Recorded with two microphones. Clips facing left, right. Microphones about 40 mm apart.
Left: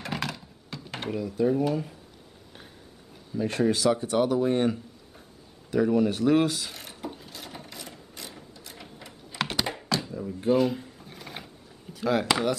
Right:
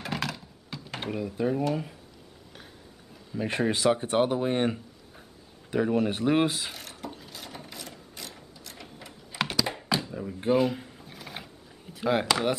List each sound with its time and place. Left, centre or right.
0.0 s door: centre
1.3 s speech: centre
3.3 s speech: right
6.7 s ratchet: centre
10.1 s a sound: right
10.5 s a sound: centre
11.9 s speech: centre